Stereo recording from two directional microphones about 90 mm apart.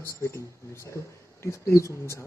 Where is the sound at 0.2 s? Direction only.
30° left (ahead or behind).